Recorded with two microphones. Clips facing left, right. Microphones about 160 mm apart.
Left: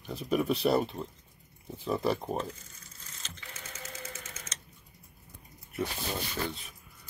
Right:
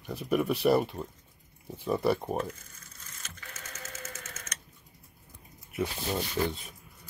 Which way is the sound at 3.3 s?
15° left (ahead or behind).